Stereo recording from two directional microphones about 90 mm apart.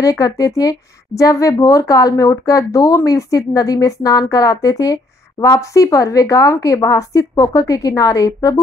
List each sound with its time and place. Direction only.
0.0 s a woman's voice: 40° left (ahead or behind)